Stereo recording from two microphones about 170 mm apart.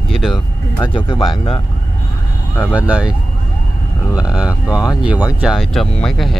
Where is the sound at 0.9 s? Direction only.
30° left (ahead or behind).